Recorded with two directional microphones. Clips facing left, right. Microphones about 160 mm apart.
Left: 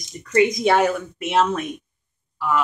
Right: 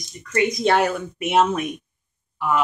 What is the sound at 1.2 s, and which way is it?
Speech, 10° right (ahead or behind).